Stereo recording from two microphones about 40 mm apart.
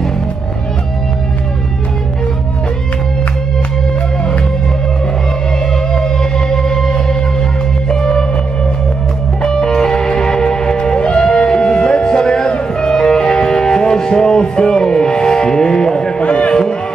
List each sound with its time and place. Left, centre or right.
5.9 s music: centre
9.4 s music: centre
16.2 s a sound: left